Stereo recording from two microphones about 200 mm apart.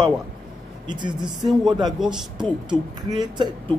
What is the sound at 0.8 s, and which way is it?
Speech, 20° right (ahead or behind).